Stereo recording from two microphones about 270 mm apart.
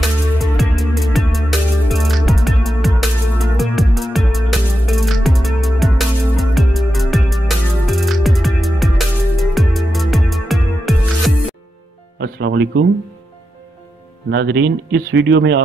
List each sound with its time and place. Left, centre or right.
0.0 s music: centre
12.2 s music: right
14.3 s speech: right